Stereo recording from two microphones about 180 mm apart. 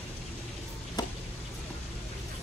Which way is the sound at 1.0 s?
20° left (ahead or behind).